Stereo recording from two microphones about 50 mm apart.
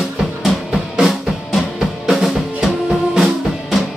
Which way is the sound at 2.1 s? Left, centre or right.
Centre.